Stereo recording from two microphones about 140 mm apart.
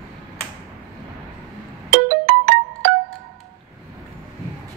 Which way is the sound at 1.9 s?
90° right.